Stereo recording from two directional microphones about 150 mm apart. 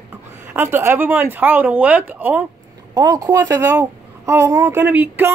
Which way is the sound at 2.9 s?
25° right (ahead or behind).